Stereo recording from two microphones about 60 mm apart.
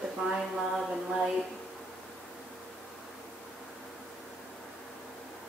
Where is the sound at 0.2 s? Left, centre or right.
Centre.